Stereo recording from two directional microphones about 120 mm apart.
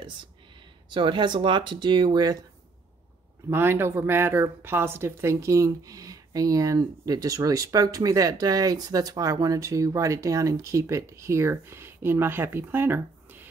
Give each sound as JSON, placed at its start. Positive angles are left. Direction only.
{"t": 0.8, "sound": "speech", "side_deg": -40}
{"t": 3.4, "sound": "a woman's voice", "side_deg": -20}